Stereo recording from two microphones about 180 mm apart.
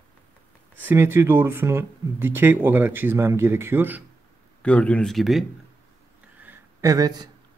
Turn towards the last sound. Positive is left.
turn(degrees=-20)  # may be behind; listen again after turning